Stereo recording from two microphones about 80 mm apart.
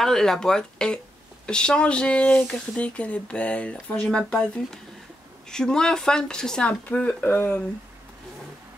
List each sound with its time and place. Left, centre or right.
0.0 s speech: centre
7.2 s speech: left